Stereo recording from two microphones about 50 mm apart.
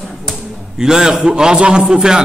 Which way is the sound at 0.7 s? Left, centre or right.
Centre.